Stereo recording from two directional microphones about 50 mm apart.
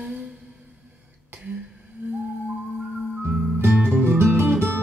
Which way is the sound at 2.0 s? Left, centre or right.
Right.